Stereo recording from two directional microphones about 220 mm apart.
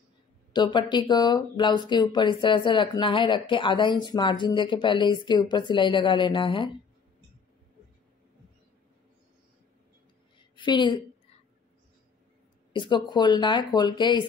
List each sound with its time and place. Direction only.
0.5 s speech: 20° left (ahead or behind)
10.5 s a woman's voice: 20° left (ahead or behind)
12.7 s speech: 20° left (ahead or behind)